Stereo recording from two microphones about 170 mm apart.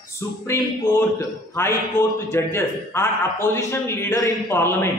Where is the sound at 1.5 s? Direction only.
15° left (ahead or behind).